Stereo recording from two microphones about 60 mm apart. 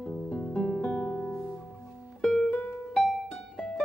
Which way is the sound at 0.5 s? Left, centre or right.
Centre.